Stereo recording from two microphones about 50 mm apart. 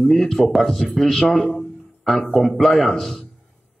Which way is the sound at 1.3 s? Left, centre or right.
Centre.